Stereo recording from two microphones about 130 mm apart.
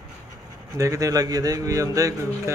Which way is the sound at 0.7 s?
25° right (ahead or behind).